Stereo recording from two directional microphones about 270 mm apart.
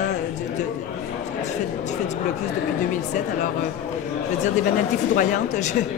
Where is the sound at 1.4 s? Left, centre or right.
Left.